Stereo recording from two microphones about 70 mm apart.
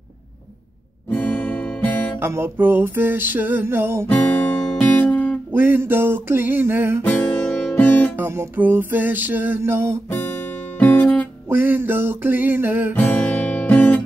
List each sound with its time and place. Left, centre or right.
1.1 s guitar: left
2.1 s music: right
4.1 s guitar: left
5.5 s music: right
7.1 s guitar: left
8.2 s music: right
8.5 s music: right
9.6 s music: right
10.2 s music: left
11.4 s music: right
12.9 s guitar: left